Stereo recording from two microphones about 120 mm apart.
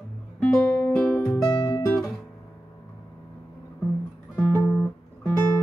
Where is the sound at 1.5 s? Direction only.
35° left (ahead or behind).